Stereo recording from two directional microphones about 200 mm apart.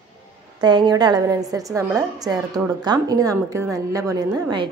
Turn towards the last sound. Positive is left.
turn(degrees=-20)  # may be behind; listen again after turning